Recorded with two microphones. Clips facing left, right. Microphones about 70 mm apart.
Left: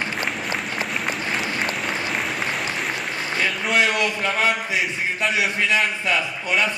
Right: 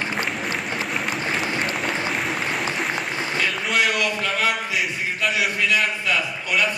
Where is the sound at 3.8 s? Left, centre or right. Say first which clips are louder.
Left 1 dB; left.